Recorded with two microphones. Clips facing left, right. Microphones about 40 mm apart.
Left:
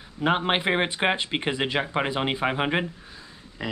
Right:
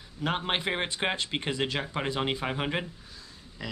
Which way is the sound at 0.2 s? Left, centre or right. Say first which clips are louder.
Left 6 dB; left.